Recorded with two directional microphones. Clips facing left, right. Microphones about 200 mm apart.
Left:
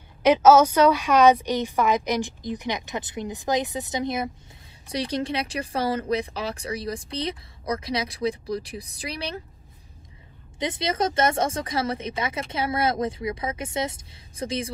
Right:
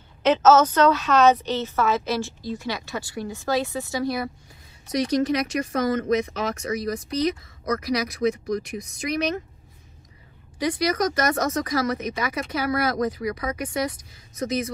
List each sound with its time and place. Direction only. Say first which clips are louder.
0.2 s a woman's voice: left 1 dB; 10° left (ahead or behind); by 9.4 s 30° left (ahead or behind)
10.6 s speech: right 3 dB; 25° left (ahead or behind)